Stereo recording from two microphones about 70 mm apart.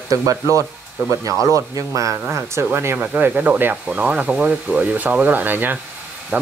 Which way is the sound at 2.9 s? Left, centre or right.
Right.